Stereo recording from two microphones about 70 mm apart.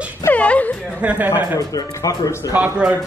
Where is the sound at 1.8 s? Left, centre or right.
Left.